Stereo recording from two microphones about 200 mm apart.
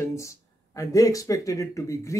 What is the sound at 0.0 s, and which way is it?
Speech, 15° left (ahead or behind).